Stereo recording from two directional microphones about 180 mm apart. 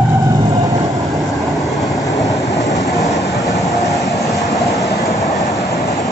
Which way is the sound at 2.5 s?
20° left (ahead or behind).